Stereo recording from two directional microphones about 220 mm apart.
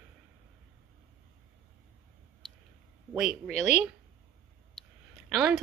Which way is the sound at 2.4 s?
Centre (ahead or behind).